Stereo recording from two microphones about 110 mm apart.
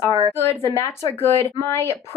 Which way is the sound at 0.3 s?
25° left (ahead or behind).